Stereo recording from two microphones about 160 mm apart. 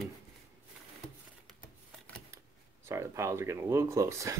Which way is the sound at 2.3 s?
15° right (ahead or behind).